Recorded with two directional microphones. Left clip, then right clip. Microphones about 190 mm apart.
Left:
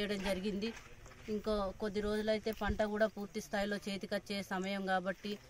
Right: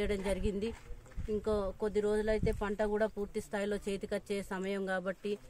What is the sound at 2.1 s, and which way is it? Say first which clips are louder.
Speech: right 3 dB; 35° right (ahead or behind).